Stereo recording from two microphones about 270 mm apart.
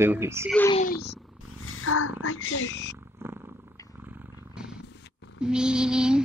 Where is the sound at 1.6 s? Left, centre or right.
Left.